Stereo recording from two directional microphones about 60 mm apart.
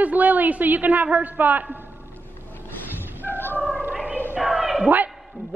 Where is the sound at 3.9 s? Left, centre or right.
Right.